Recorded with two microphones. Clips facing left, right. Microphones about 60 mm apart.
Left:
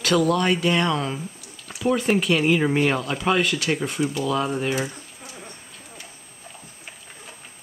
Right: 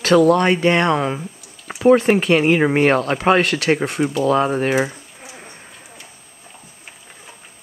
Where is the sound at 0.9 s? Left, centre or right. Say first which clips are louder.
Right 6 dB; right.